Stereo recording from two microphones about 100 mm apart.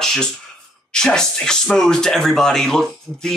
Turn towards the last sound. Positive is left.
turn(degrees=5)  # may be behind; listen again after turning